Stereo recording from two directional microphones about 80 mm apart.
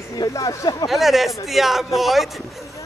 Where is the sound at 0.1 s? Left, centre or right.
Left.